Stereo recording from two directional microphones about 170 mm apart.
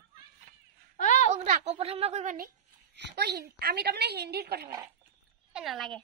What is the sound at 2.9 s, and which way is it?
A woman's voice, 85° right.